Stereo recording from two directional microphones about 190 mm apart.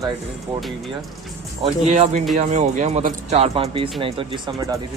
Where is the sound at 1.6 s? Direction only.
40° right (ahead or behind).